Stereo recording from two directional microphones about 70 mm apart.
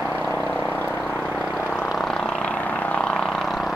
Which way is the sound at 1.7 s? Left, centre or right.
Centre.